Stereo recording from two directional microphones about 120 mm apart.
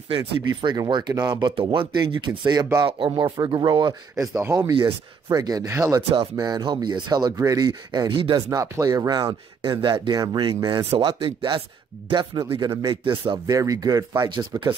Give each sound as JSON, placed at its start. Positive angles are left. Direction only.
{"t": 0.6, "sound": "speech", "side_deg": -40}
{"t": 2.8, "sound": "speech", "side_deg": -50}
{"t": 4.2, "sound": "speech", "side_deg": -25}
{"t": 6.3, "sound": "speech", "side_deg": -35}
{"t": 8.5, "sound": "speech", "side_deg": -25}